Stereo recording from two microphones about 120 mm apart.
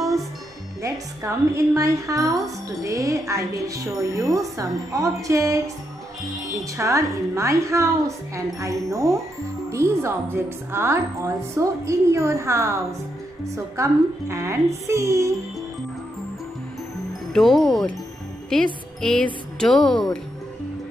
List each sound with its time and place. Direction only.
0.8 s speech: 25° right (ahead or behind)
6.8 s speech: 25° right (ahead or behind)
17.3 s a woman's voice: centre (ahead or behind)